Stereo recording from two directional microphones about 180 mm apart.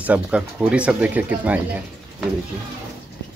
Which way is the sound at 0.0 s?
5° right (ahead or behind).